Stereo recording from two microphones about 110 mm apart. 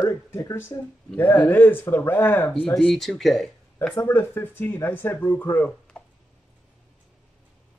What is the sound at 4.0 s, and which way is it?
Speech, 25° left (ahead or behind).